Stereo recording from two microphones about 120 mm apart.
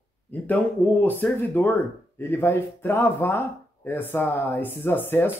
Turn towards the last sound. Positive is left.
turn(degrees=15)  # may be behind; listen again after turning